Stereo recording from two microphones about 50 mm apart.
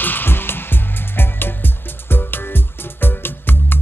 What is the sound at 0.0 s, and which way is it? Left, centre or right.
Music, left.